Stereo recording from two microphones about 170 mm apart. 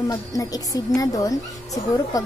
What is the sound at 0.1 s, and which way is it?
Speech, 20° left (ahead or behind).